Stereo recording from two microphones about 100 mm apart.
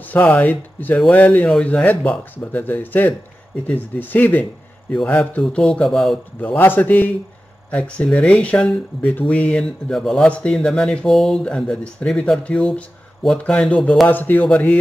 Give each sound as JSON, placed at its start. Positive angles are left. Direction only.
{"t": 0.0, "sound": "speech", "side_deg": 15}
{"t": 6.4, "sound": "speech", "side_deg": 20}
{"t": 14.0, "sound": "speech", "side_deg": 20}